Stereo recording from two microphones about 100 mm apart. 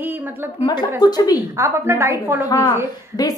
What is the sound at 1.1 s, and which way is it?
Speech, 40° left (ahead or behind).